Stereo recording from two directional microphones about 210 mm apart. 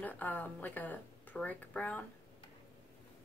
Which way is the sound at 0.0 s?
10° left (ahead or behind).